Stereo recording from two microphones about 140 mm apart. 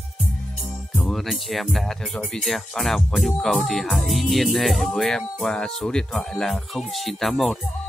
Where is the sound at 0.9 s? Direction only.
Centre (ahead or behind).